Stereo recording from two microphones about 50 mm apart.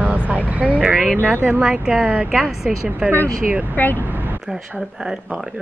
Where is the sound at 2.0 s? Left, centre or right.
Right.